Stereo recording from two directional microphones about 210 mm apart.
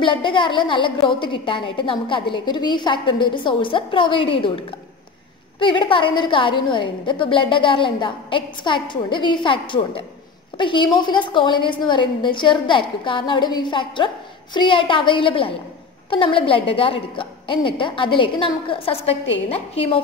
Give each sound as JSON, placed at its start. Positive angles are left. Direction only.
{"t": 0.0, "sound": "a woman's voice", "side_deg": 25}